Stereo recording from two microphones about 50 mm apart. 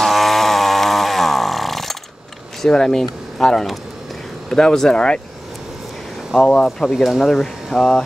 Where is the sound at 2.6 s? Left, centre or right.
Centre.